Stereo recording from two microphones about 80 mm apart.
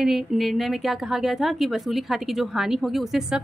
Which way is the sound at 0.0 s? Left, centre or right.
Centre.